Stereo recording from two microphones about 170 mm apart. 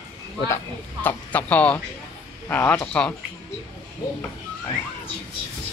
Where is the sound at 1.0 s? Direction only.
10° left (ahead or behind).